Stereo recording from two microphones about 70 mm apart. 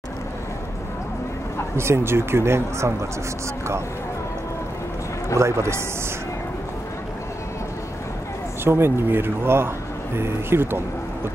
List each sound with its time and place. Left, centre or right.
1.8 s speech: right
5.4 s speech: right
8.6 s speech: right